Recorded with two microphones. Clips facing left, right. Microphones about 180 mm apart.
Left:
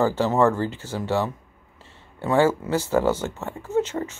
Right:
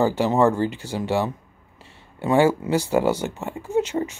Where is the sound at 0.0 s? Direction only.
15° right (ahead or behind).